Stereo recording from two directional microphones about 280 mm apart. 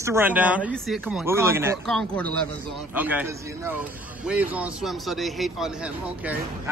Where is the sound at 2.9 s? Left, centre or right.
Centre.